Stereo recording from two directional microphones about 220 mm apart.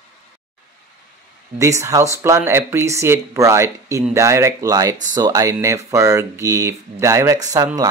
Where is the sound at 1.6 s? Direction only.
15° right (ahead or behind).